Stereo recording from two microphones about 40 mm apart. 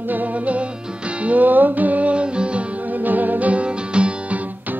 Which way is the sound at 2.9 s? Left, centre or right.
Right.